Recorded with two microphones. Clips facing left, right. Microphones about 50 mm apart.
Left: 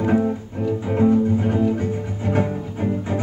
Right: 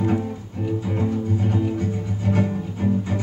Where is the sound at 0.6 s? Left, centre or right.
Centre.